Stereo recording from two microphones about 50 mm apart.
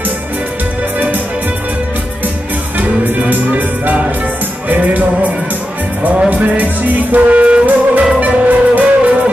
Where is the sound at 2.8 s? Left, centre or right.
Right.